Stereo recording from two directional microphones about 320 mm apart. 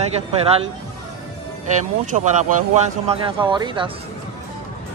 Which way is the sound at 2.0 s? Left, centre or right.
Right.